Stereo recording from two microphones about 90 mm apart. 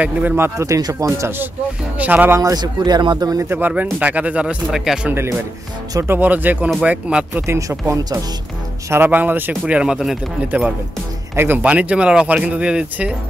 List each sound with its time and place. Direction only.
0.0 s speech: 20° right (ahead or behind)
0.6 s speech: 40° right (ahead or behind)
2.0 s speech: 20° right (ahead or behind)
2.5 s speech: 50° right (ahead or behind)
3.4 s speech: 20° right (ahead or behind)
5.1 s speech: 25° right (ahead or behind)
7.4 s speech: 35° right (ahead or behind)
8.9 s speech: 20° right (ahead or behind); by 10.1 s 5° right (ahead or behind)
10.5 s speech: 20° right (ahead or behind)